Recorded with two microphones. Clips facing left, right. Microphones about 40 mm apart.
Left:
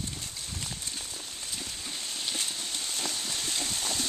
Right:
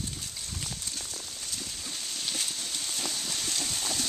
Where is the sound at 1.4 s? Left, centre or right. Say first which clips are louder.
Left 1 dB; centre.